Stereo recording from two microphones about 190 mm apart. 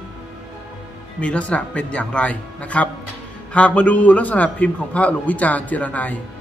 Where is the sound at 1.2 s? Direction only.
5° left (ahead or behind).